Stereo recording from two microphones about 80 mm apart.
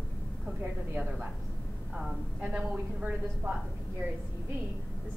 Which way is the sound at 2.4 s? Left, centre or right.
Centre.